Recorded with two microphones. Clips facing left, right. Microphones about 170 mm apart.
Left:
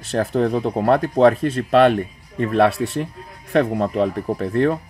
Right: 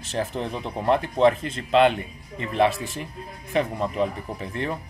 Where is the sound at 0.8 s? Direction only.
75° left (ahead or behind).